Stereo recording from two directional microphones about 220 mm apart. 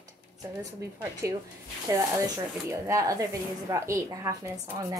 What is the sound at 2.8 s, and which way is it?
A woman's voice, 15° right (ahead or behind).